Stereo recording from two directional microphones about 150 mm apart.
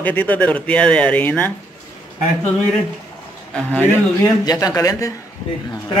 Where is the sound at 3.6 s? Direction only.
10° left (ahead or behind).